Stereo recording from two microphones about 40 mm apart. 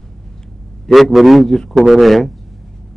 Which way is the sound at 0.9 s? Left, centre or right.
Centre.